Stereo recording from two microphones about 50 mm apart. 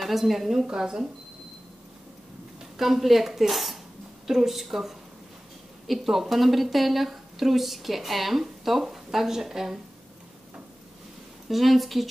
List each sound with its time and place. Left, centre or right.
0.0 s speech: centre
2.8 s speech: centre
11.4 s speech: centre